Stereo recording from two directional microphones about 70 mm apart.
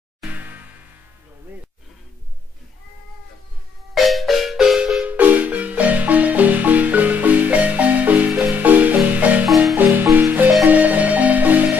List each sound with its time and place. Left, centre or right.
3.9 s music: centre
5.0 s marimba: right